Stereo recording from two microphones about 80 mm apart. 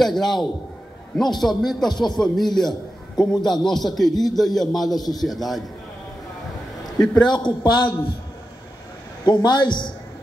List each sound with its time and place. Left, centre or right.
0.0 s a man's voice: centre
7.2 s a man's voice: left
9.2 s a man's voice: left